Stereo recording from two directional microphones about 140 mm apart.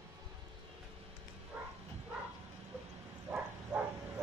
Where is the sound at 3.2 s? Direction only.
10° right (ahead or behind).